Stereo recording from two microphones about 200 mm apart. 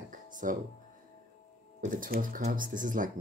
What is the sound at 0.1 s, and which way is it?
Music, 40° right (ahead or behind).